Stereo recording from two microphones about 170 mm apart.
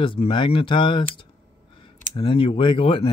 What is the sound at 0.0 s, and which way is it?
Speech, 30° left (ahead or behind).